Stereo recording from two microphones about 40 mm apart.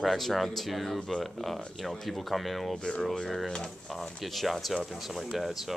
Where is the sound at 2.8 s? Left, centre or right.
Left.